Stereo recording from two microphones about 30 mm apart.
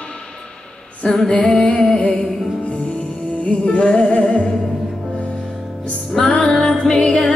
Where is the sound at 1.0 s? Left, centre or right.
Left.